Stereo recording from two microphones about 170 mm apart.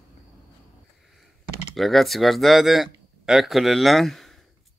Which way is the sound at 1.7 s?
Centre (ahead or behind).